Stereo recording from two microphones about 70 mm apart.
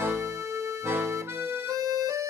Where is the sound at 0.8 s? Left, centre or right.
Right.